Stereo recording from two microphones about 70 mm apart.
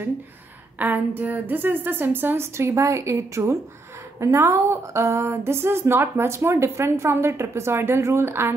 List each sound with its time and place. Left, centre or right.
0.7 s speech: right